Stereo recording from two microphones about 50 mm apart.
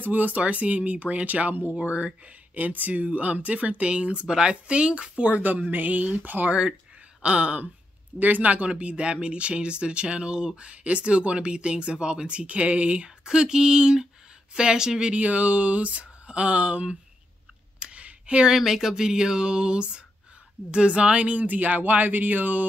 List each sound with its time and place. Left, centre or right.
0.0 s speech: right
5.7 s speech: right
7.2 s speech: right
15.1 s speech: right
17.7 s a sound: right
18.5 s speech: centre; by 22.7 s right